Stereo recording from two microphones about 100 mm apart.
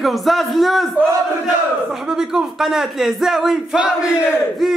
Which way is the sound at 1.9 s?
5° right (ahead or behind).